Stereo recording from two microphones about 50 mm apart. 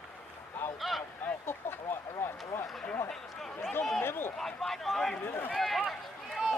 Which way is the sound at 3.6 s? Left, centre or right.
Left.